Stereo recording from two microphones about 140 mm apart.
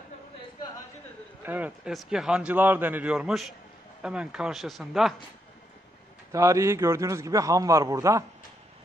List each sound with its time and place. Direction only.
1.4 s speech: 15° right (ahead or behind)
1.9 s a man's voice: centre (ahead or behind)
6.3 s a man's voice: 20° right (ahead or behind)